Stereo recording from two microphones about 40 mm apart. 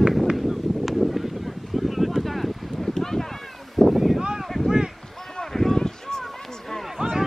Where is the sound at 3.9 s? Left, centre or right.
Centre.